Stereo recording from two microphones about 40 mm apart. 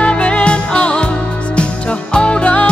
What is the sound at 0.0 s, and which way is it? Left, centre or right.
Music, left.